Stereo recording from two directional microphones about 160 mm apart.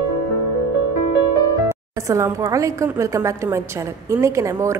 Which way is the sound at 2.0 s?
20° right (ahead or behind).